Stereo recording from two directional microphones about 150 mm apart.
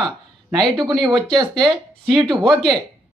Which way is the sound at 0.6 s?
30° right (ahead or behind).